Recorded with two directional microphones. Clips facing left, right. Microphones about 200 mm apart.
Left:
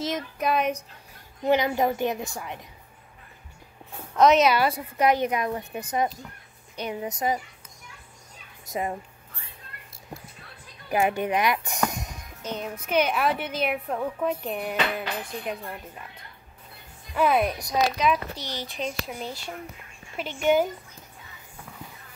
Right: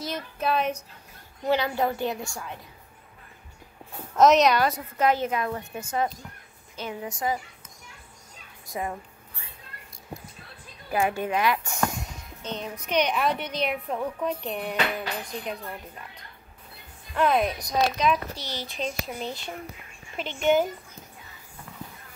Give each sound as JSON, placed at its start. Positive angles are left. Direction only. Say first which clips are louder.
{"t": 0.0, "sound": "a sound", "louder": "left 2 dB", "side_deg": 15}
{"t": 1.5, "sound": "speech", "louder": "left 2 dB", "side_deg": 15}
{"t": 4.2, "sound": "a woman's voice", "louder": "even", "side_deg": 0}
{"t": 8.7, "sound": "a woman's voice", "louder": "left 3 dB", "side_deg": 20}
{"t": 10.9, "sound": "speech", "louder": "left 2 dB", "side_deg": 20}
{"t": 11.9, "sound": "music", "louder": "even", "side_deg": 20}
{"t": 12.5, "sound": "a woman's voice", "louder": "left 1 dB", "side_deg": 5}
{"t": 17.1, "sound": "a woman's voice", "louder": "left 1 dB", "side_deg": 5}